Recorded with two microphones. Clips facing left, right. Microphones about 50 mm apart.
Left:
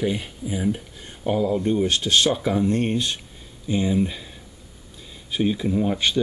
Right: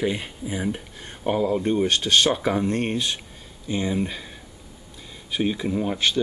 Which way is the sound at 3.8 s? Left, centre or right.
Centre.